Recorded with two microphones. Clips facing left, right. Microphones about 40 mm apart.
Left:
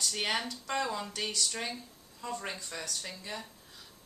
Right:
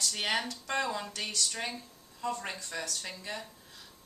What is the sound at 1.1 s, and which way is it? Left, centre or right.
Speech, centre.